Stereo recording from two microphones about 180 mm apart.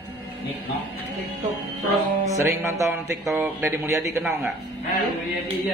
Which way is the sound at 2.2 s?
20° right (ahead or behind).